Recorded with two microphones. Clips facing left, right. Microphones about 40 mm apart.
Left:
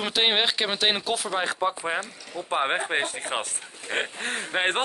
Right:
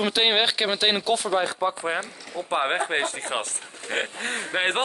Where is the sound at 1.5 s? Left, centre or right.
Left.